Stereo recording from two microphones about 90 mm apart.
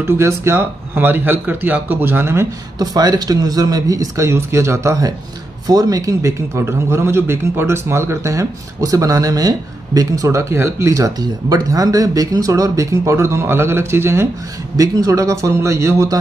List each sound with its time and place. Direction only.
0.0 s a man's voice: 30° right (ahead or behind)
2.8 s a man's voice: 45° right (ahead or behind); by 14.2 s 30° right (ahead or behind)
14.8 s a man's voice: 40° right (ahead or behind)